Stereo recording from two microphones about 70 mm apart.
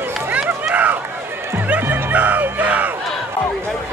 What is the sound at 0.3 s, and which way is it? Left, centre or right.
Run, centre.